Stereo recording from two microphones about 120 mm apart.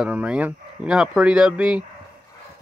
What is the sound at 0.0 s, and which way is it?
Speech, 10° right (ahead or behind).